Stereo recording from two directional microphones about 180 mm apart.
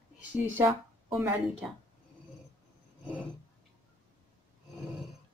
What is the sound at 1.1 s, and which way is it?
Speech, 10° right (ahead or behind).